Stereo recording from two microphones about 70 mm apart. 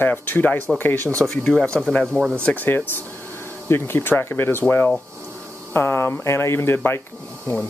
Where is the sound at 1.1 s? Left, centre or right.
Centre.